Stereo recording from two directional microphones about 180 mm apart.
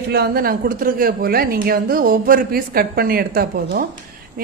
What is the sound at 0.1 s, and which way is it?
Speech, 60° right (ahead or behind).